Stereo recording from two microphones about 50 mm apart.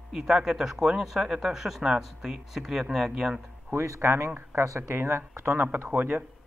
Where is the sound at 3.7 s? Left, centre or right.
Right.